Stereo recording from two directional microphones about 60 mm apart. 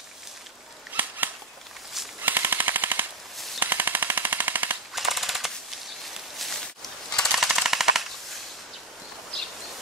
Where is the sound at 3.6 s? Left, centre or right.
Right.